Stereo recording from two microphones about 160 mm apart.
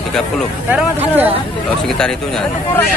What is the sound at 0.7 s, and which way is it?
Speech, 10° right (ahead or behind).